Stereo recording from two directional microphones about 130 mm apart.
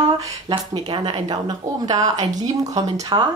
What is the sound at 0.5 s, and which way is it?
Speech, 40° right (ahead or behind).